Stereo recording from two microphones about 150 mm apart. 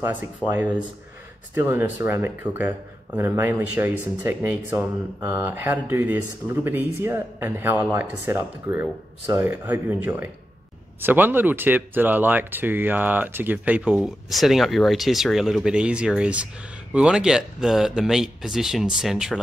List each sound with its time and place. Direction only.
0.0 s speech: 10° right (ahead or behind)